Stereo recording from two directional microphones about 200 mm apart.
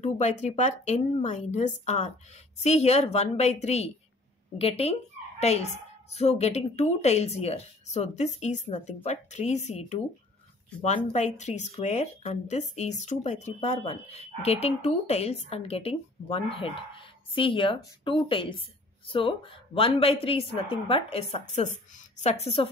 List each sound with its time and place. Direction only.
0.0 s a woman's voice: 35° left (ahead or behind)